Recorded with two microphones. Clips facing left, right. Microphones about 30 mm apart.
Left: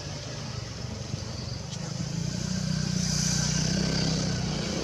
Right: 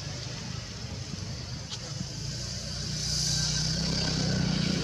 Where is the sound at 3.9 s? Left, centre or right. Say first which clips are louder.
Left 1 dB; right.